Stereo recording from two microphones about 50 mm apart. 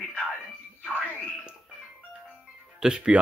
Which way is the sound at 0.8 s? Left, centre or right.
Left.